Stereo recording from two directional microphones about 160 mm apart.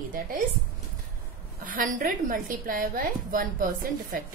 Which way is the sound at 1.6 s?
55° right (ahead or behind).